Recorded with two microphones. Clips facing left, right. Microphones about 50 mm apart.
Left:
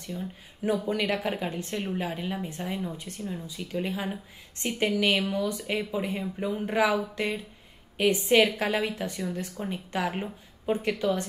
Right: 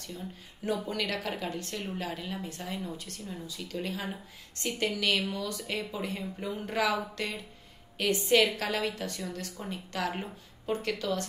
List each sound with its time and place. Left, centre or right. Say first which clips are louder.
0.7 s a woman's voice: left 5 dB; left